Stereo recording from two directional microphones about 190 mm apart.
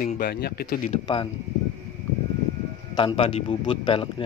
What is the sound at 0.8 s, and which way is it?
Speech, 30° left (ahead or behind).